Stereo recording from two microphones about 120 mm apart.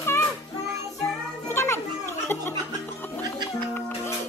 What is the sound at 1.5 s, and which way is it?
Children playing, 25° left (ahead or behind).